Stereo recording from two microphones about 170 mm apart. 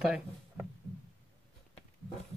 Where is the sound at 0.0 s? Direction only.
5° right (ahead or behind).